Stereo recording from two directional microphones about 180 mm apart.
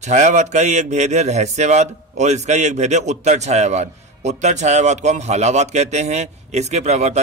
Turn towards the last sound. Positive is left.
turn(degrees=-40)  # may be behind; listen again after turning